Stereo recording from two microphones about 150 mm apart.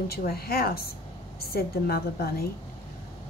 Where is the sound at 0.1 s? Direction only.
90° left.